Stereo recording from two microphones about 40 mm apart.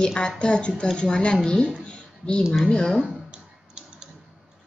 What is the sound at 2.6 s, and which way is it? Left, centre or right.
Speech, centre.